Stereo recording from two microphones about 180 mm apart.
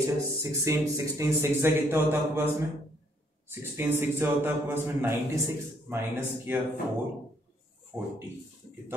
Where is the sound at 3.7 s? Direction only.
10° right (ahead or behind).